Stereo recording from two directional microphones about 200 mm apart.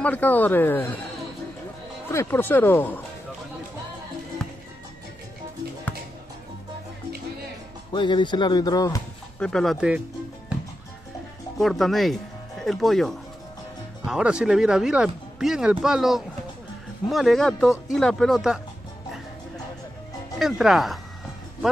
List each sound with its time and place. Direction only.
0.0 s speech: 10° left (ahead or behind)
2.0 s speech: 10° left (ahead or behind)
4.4 s music: 5° left (ahead or behind)
7.9 s speech: 25° left (ahead or behind)
9.4 s speech: 5° left (ahead or behind)
10.5 s music: 5° right (ahead or behind)
11.5 s speech: centre (ahead or behind)
20.3 s speech: centre (ahead or behind)